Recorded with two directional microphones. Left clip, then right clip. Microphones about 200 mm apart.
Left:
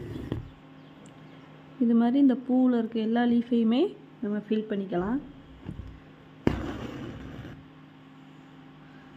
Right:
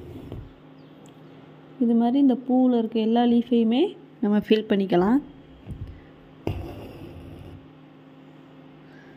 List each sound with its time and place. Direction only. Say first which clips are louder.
1.9 s a woman's voice: right 2 dB; centre (ahead or behind)
4.2 s a woman's voice: right 9 dB; 30° right (ahead or behind)
6.4 s a sound: left 4 dB; 25° left (ahead or behind)